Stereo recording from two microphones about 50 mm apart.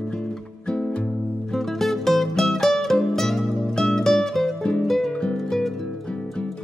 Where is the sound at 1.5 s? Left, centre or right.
Centre.